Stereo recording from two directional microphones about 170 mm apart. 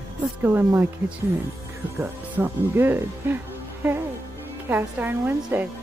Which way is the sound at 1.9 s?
15° right (ahead or behind).